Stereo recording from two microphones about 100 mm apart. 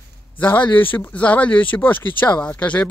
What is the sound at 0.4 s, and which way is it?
Speech, 15° left (ahead or behind).